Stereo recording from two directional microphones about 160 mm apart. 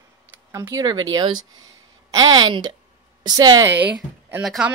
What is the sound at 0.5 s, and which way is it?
Speech, 20° right (ahead or behind).